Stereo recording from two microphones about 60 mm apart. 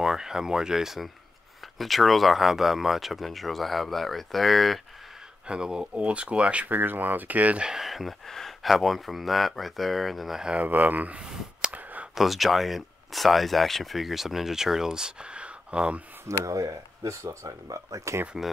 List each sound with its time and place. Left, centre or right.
0.0 s speech: centre
5.5 s speech: centre
7.6 s speech: centre
10.5 s speech: right
11.2 s clicking: centre
11.7 s a sound: right
12.2 s speech: centre
16.3 s speech: right
18.4 s speech: centre